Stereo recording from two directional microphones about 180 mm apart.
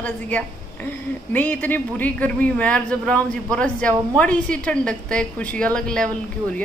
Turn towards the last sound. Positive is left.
turn(degrees=5)  # may be behind; listen again after turning